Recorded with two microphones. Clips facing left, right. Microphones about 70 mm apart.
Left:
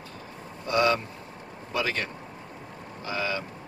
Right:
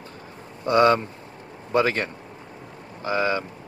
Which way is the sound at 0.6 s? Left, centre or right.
Right.